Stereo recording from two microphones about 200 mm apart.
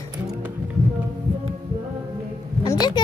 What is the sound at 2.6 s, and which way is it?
Heart sounds, 20° left (ahead or behind).